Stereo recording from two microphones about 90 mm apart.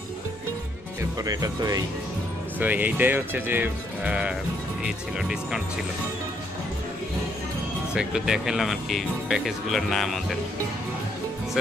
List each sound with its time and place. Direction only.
1.2 s speech: 45° right (ahead or behind)
2.6 s speech: 20° right (ahead or behind)
7.9 s speech: 10° right (ahead or behind)